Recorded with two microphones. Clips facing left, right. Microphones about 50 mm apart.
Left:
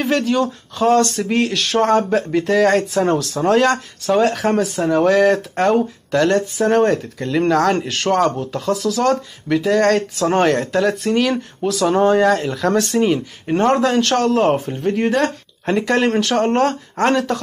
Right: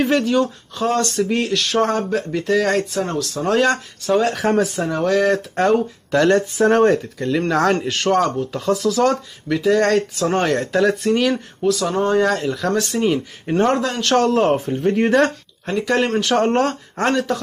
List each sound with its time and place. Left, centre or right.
0.0 s a sound: centre
0.7 s speech: centre
8.6 s speech: centre
9.5 s speech: centre